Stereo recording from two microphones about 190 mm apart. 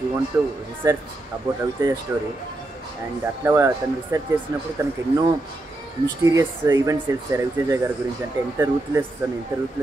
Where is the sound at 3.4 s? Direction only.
10° right (ahead or behind).